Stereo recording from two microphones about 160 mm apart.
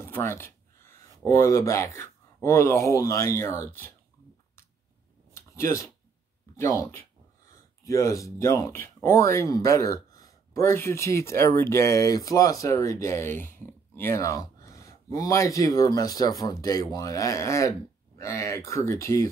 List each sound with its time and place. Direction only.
0.0 s speech: 15° left (ahead or behind)
5.3 s a sound: 15° left (ahead or behind)
6.5 s speech: 15° left (ahead or behind)